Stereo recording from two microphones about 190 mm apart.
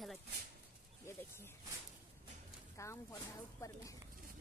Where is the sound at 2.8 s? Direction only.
15° left (ahead or behind).